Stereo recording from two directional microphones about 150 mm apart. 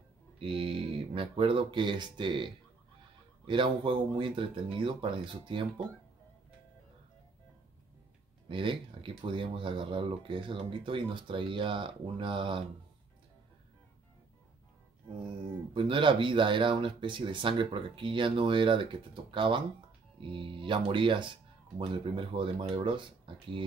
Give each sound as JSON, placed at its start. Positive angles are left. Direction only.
{"t": 0.4, "sound": "speech", "side_deg": -35}
{"t": 8.5, "sound": "speech", "side_deg": -35}
{"t": 15.7, "sound": "speech", "side_deg": -35}